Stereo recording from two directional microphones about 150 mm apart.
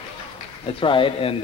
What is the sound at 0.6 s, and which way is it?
Speech, 35° left (ahead or behind).